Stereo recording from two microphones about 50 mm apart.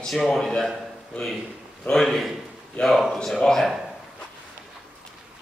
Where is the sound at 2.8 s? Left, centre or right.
Left.